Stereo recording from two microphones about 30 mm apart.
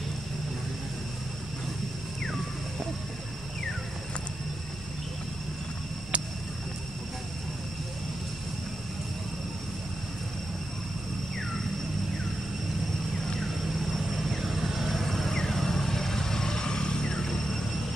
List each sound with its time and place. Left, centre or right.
6.1 s a sound: right
13.9 s vehicle: centre
15.0 s vehicle: centre; by 17.2 s left